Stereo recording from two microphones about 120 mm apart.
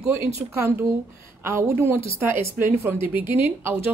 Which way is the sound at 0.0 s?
20° right (ahead or behind).